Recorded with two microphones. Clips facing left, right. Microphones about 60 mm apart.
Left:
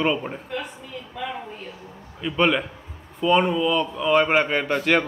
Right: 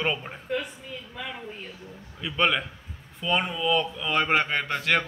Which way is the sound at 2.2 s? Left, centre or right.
Centre.